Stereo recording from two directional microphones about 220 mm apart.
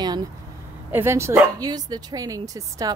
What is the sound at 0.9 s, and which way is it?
Speech, 10° right (ahead or behind).